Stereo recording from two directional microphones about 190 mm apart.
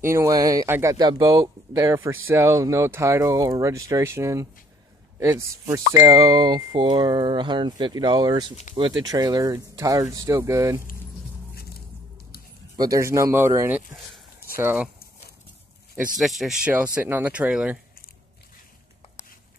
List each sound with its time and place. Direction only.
0.0 s speech: 15° right (ahead or behind)
12.7 s speech: 20° right (ahead or behind)
16.2 s speech: centre (ahead or behind)